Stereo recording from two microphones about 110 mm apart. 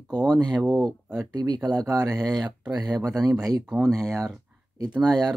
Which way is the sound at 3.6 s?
5° right (ahead or behind).